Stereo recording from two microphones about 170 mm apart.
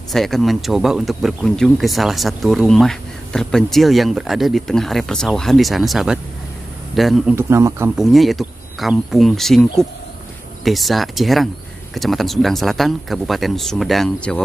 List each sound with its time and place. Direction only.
0.1 s speech: centre (ahead or behind)
7.3 s speech: 15° right (ahead or behind)
7.9 s speech: centre (ahead or behind)